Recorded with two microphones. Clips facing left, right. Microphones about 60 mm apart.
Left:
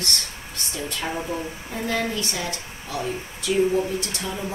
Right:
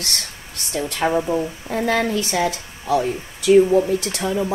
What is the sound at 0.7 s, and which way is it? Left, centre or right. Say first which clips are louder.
Speech: right 9 dB; right.